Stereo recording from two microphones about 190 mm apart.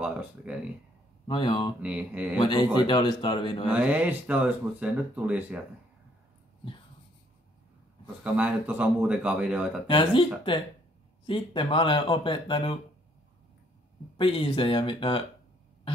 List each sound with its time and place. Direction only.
0.0 s speech: 5° right (ahead or behind)
1.2 s speech: 25° left (ahead or behind)
1.8 s speech: 5° right (ahead or behind)
2.3 s speech: 25° left (ahead or behind)
3.7 s speech: 5° right (ahead or behind)
8.2 s speech: 5° right (ahead or behind)
9.8 s speech: 25° left (ahead or behind)
14.1 s speech: 25° left (ahead or behind)